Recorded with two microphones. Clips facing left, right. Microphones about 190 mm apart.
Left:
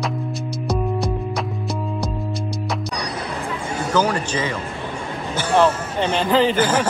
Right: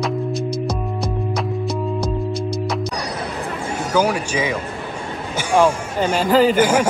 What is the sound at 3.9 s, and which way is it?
Speech, 10° right (ahead or behind).